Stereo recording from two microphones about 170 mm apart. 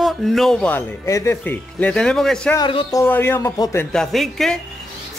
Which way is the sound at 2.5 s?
25° left (ahead or behind).